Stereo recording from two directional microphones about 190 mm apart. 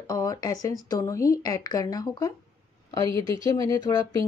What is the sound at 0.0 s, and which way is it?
Speech, 20° left (ahead or behind).